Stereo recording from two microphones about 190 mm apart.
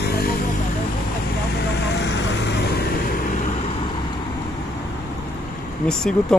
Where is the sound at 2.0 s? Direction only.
65° left (ahead or behind).